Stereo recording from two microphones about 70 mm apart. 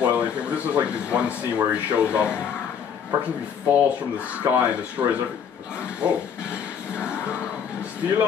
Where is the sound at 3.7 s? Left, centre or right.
Right.